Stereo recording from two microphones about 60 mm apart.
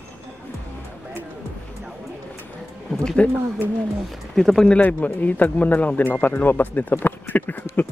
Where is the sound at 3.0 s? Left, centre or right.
Centre.